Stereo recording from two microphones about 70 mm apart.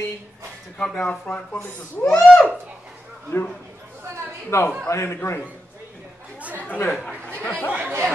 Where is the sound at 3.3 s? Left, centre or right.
Left.